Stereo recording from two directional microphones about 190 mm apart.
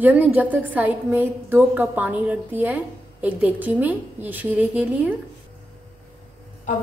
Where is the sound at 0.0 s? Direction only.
10° right (ahead or behind).